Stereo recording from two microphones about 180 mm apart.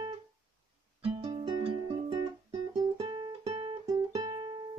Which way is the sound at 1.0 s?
30° right (ahead or behind).